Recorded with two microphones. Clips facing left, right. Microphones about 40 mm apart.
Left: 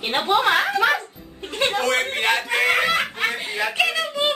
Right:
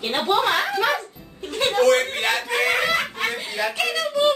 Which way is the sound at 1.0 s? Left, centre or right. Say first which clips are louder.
Even; left.